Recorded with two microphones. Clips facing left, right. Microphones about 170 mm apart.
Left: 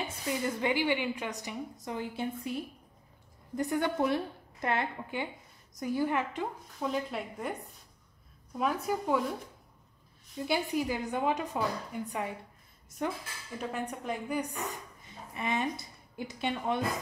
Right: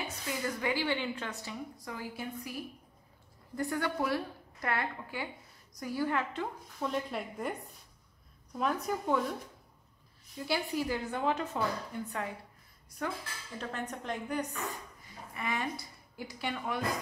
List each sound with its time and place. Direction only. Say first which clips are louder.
0.1 s a woman's voice: left 3 dB; 25° left (ahead or behind)
6.8 s speech: left 1 dB; centre (ahead or behind)
8.5 s a woman's voice: left 2 dB; 5° left (ahead or behind)
10.4 s a woman's voice: left 2 dB; 20° left (ahead or behind)